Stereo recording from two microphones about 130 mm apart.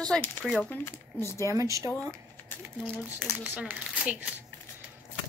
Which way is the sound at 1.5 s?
25° right (ahead or behind).